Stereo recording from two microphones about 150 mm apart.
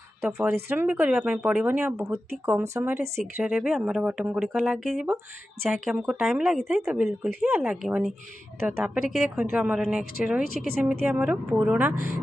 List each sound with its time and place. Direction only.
0.2 s speech: 5° right (ahead or behind)
3.5 s speech: 5° right (ahead or behind)